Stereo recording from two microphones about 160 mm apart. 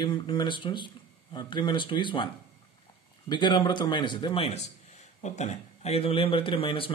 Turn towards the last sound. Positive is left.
turn(degrees=35)  # may be behind; listen again after turning